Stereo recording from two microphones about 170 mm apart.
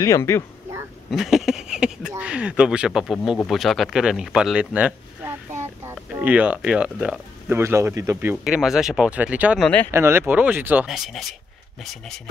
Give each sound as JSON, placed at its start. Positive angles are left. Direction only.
{"t": 0.0, "sound": "speech", "side_deg": 15}
{"t": 1.1, "sound": "speech", "side_deg": 0}
{"t": 8.5, "sound": "speech", "side_deg": 0}